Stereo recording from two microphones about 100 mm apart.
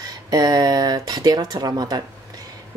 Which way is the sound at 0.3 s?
40° right (ahead or behind).